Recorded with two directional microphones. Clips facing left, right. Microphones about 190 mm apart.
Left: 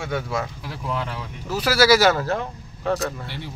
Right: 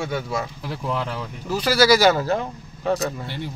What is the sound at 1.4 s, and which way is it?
Speech, 5° left (ahead or behind).